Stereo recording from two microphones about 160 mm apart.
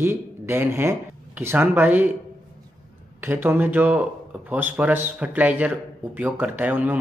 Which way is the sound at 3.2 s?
15° right (ahead or behind).